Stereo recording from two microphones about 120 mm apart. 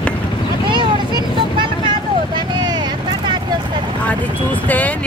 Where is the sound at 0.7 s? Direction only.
40° right (ahead or behind).